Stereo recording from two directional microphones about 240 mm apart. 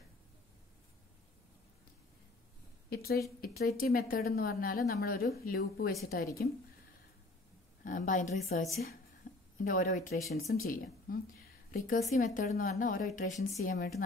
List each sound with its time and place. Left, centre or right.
2.9 s a woman's voice: left
7.8 s a woman's voice: left
9.3 s a sound: left
9.6 s a woman's voice: left